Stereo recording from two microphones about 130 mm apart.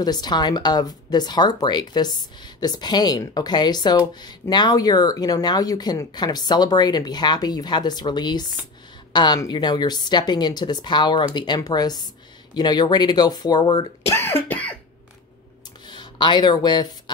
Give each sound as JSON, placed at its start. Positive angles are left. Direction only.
{"t": 0.0, "sound": "speech", "side_deg": 30}
{"t": 14.1, "sound": "cough", "side_deg": 15}
{"t": 15.9, "sound": "speech", "side_deg": 35}